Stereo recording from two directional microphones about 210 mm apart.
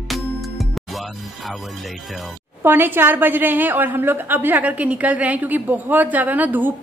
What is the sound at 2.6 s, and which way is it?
A woman's voice, 10° right (ahead or behind).